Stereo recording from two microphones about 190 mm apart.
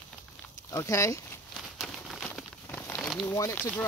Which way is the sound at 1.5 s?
Centre (ahead or behind).